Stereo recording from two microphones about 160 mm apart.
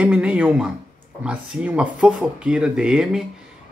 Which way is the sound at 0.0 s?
5° right (ahead or behind).